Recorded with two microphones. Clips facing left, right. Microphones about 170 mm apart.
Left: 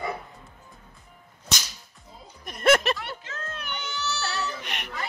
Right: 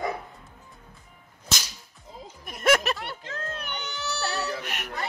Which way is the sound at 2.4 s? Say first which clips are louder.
Left 2 dB; 5° right (ahead or behind).